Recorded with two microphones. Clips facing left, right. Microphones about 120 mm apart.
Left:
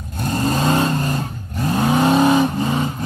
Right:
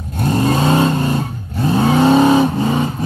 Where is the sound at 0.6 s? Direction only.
20° right (ahead or behind).